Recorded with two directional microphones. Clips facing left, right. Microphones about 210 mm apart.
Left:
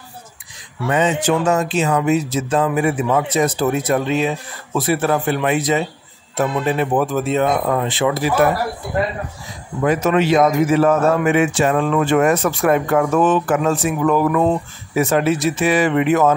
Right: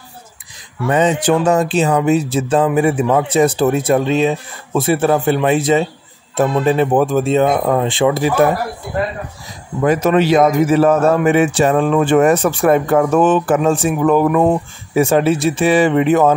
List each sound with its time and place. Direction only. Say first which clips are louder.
0.8 s speech: right 3 dB; 35° right (ahead or behind)
9.8 s a man's voice: right 3 dB; 35° right (ahead or behind)